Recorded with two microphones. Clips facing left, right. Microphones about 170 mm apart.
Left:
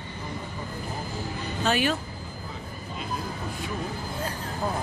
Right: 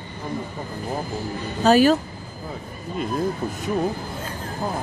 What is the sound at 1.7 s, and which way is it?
Speech, 40° right (ahead or behind).